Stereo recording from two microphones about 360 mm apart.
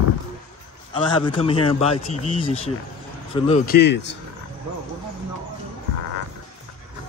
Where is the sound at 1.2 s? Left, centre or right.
Centre.